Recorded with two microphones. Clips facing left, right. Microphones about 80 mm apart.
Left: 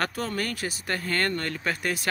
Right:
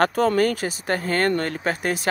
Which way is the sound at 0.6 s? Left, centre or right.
Right.